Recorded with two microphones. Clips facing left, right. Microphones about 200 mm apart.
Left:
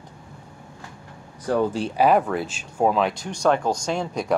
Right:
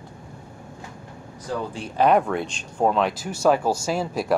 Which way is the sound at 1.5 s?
60° left (ahead or behind).